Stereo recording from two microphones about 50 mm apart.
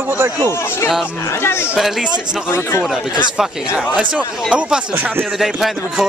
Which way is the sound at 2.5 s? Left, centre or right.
Left.